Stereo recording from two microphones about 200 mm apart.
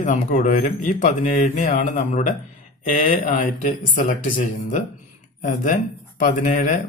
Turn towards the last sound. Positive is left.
turn(degrees=40)  # may be behind; listen again after turning